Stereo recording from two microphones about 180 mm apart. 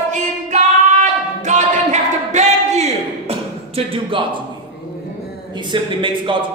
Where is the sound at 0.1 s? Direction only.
40° right (ahead or behind).